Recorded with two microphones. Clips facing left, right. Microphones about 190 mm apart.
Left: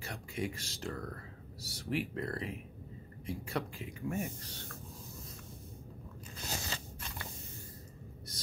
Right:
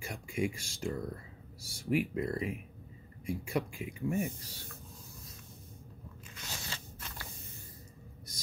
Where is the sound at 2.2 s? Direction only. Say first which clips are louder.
Right 4 dB; 10° right (ahead or behind).